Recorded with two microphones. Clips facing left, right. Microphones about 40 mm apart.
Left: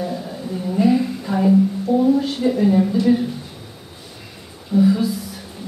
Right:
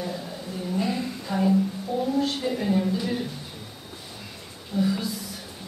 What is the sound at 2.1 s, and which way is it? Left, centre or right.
Speech, centre.